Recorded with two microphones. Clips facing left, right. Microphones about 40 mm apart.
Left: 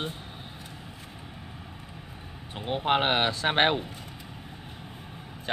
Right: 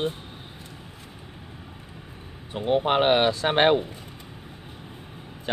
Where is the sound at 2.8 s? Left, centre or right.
Centre.